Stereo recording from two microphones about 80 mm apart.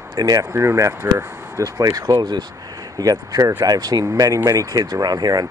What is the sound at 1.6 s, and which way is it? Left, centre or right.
Speech, right.